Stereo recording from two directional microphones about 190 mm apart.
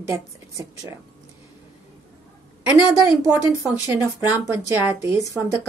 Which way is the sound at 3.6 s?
15° right (ahead or behind).